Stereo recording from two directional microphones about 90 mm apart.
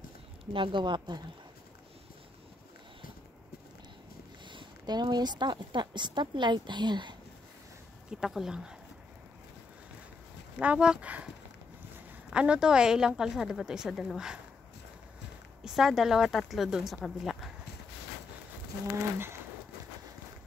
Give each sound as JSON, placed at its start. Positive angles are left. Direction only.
{"t": 0.5, "sound": "a woman's voice", "side_deg": -65}
{"t": 4.5, "sound": "a woman's voice", "side_deg": -55}
{"t": 8.1, "sound": "speech", "side_deg": -5}
{"t": 10.6, "sound": "a woman's voice", "side_deg": -15}
{"t": 12.3, "sound": "a woman's voice", "side_deg": -10}
{"t": 15.6, "sound": "speech", "side_deg": -5}